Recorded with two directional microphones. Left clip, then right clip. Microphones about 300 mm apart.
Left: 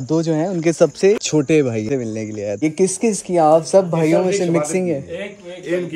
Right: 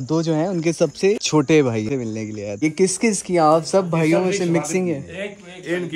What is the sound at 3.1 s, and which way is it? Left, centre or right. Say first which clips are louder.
Speech: left 4 dB; right.